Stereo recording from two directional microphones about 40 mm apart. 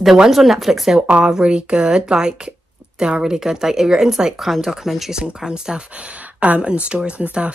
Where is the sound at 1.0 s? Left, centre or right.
Right.